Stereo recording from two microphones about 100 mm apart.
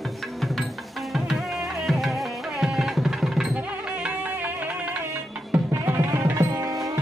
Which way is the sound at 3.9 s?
15° right (ahead or behind).